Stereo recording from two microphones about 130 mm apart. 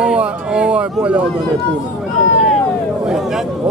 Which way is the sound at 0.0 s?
5° right (ahead or behind).